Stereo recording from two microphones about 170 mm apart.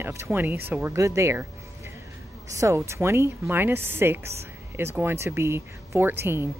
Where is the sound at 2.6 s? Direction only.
15° right (ahead or behind).